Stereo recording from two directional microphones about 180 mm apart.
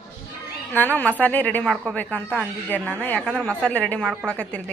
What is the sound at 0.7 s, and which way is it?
Speech, 10° left (ahead or behind).